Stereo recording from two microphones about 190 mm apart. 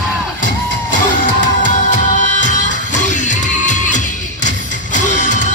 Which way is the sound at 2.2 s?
40° left (ahead or behind).